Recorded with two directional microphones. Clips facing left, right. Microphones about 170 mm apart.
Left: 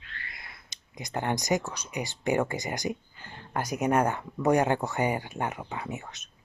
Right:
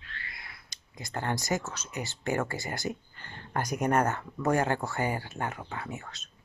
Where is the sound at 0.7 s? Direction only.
20° left (ahead or behind).